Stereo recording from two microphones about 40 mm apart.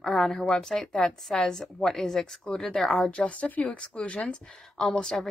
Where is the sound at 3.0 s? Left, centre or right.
Left.